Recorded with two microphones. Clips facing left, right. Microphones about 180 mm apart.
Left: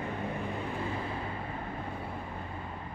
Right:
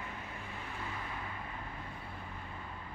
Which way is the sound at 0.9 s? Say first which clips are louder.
Left 7 dB; 30° left (ahead or behind).